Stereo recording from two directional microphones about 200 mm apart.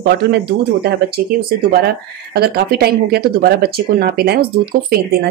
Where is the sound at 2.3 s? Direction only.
50° right (ahead or behind).